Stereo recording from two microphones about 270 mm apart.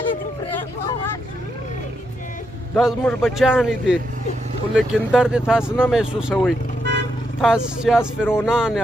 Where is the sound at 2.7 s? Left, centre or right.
Centre.